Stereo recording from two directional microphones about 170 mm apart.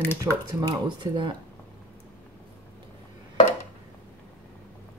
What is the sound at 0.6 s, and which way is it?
Speech, 30° right (ahead or behind).